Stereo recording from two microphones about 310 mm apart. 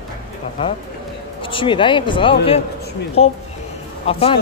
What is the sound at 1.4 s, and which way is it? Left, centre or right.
Speech, centre.